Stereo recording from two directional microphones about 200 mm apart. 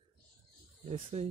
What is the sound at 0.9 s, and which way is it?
Speech, 30° right (ahead or behind).